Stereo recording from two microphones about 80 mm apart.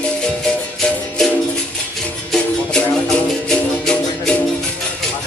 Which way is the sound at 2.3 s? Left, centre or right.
Centre.